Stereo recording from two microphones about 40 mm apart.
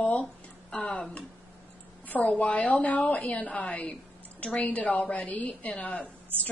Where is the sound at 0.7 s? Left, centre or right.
Centre.